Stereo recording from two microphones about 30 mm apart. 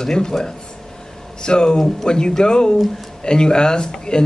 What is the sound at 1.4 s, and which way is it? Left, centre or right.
Speech, left.